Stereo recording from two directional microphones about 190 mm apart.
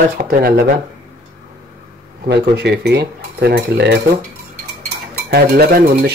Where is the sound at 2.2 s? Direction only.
60° right (ahead or behind).